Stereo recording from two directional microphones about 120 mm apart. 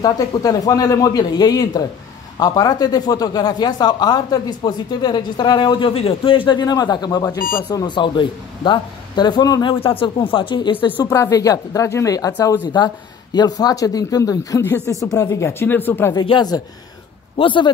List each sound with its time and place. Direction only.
0.0 s speech: 30° left (ahead or behind)
11.1 s speech: 30° left (ahead or behind)
16.2 s a man's voice: 40° left (ahead or behind)